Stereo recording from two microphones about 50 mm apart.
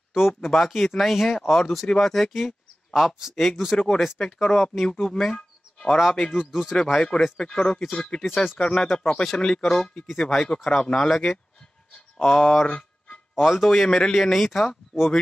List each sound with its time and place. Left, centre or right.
0.1 s speech: centre
3.7 s speech: centre
5.0 s a sound: centre
6.3 s a man's voice: centre
6.8 s speech: centre
7.8 s speech: centre
13.3 s a man's voice: centre